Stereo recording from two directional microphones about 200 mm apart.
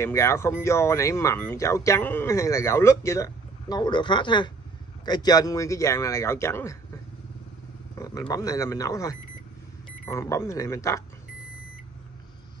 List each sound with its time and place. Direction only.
0.0 s speech: 15° left (ahead or behind)
8.0 s speech: 15° left (ahead or behind)